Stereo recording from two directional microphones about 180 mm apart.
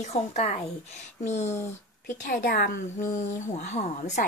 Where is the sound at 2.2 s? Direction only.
55° left (ahead or behind).